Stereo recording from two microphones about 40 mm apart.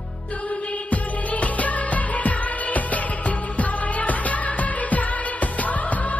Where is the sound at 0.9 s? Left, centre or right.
Left.